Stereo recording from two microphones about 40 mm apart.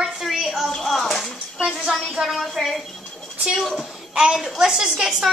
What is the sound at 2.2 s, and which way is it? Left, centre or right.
Speech, centre.